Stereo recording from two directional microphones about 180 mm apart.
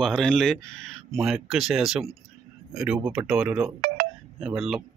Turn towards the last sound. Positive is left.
turn(degrees=0)  # may be behind; listen again after turning